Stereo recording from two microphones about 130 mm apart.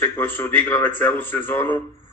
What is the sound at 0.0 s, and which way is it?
A man's voice, 15° left (ahead or behind).